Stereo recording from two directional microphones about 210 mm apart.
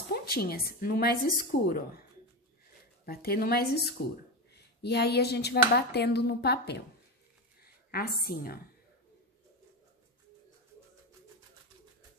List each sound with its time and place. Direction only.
0.1 s a woman's voice: 45° left (ahead or behind)
3.1 s speech: 45° left (ahead or behind)
7.9 s speech: 45° left (ahead or behind)